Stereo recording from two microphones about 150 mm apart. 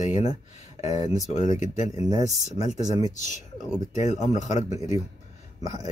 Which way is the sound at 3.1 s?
55° left (ahead or behind).